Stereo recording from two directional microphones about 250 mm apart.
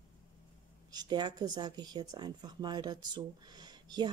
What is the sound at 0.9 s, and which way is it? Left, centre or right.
A woman's voice, centre.